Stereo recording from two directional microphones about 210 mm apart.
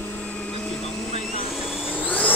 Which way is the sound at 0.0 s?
10° left (ahead or behind).